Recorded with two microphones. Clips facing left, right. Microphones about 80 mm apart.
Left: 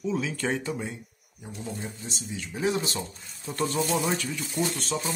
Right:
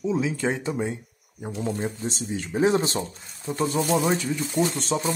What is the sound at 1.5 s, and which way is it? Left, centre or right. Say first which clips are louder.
Speech: right 8 dB; right.